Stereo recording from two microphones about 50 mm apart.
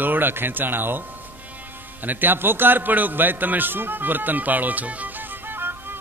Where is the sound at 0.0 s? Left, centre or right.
Right.